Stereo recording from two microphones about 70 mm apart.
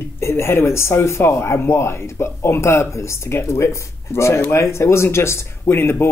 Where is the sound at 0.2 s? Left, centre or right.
Left.